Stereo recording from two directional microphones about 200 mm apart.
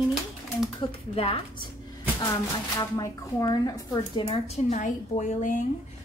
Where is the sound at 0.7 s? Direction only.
30° left (ahead or behind).